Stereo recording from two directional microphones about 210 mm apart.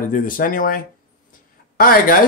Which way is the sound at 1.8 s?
45° left (ahead or behind).